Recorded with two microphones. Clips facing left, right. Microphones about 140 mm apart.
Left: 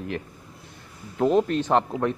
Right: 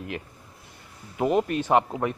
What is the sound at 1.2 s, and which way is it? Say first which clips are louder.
Speech: left 3 dB; 10° right (ahead or behind).